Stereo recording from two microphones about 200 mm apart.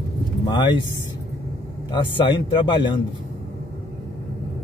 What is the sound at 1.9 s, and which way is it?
A man's voice, 25° left (ahead or behind).